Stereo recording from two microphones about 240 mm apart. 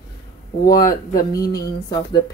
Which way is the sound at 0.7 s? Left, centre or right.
Centre.